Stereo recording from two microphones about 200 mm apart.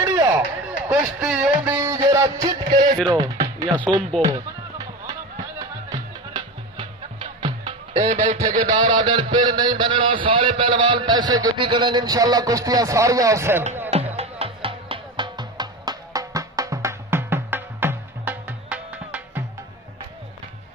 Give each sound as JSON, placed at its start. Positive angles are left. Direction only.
{"t": 0.0, "sound": "a sound", "side_deg": -15}
{"t": 0.8, "sound": "speech", "side_deg": -5}
{"t": 1.7, "sound": "music", "side_deg": -15}
{"t": 3.1, "sound": "speech", "side_deg": -20}
{"t": 4.2, "sound": "music", "side_deg": -15}
{"t": 8.5, "sound": "speech", "side_deg": -40}
{"t": 8.9, "sound": "a man's voice", "side_deg": -25}
{"t": 14.1, "sound": "music", "side_deg": -30}